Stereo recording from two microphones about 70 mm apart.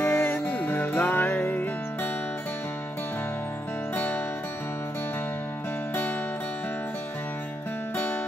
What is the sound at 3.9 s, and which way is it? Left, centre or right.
Music, left.